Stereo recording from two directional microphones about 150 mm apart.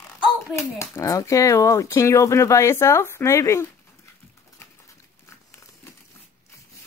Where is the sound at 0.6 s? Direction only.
20° left (ahead or behind).